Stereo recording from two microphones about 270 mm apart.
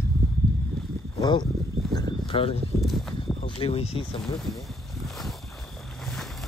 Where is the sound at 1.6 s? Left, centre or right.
Centre.